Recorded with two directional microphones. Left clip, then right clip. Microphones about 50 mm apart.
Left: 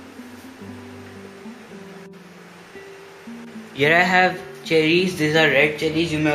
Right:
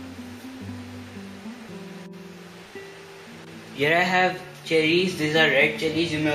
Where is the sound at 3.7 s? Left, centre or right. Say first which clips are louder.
Left 5 dB; left.